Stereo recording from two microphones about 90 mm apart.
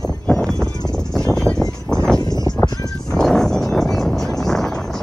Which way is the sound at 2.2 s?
50° left (ahead or behind).